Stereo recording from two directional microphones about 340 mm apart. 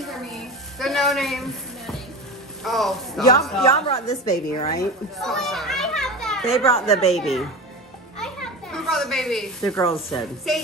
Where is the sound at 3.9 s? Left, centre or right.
Centre.